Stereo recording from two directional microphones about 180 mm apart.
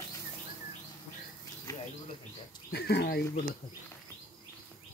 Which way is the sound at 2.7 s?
65° left (ahead or behind).